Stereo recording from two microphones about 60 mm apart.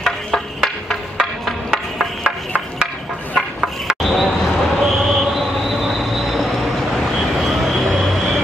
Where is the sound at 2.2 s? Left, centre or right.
Centre.